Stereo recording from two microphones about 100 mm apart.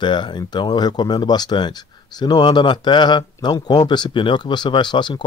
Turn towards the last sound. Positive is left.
turn(degrees=50)  # may be behind; listen again after turning